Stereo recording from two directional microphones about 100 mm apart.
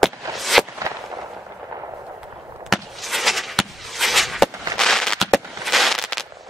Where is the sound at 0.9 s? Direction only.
30° right (ahead or behind).